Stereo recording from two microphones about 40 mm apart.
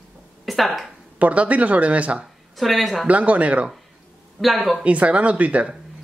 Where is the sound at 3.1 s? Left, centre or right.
Right.